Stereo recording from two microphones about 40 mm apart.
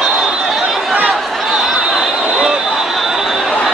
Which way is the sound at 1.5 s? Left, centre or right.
Centre.